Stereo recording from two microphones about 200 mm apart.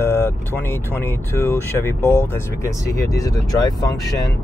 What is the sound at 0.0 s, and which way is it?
Speech, 10° left (ahead or behind).